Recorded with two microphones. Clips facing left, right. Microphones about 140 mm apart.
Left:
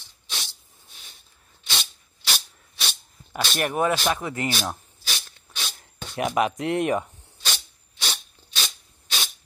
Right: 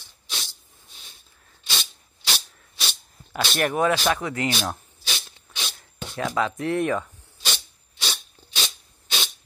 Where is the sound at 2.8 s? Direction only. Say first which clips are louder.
Even; centre (ahead or behind).